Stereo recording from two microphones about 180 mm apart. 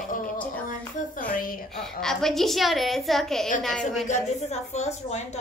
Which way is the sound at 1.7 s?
5° left (ahead or behind).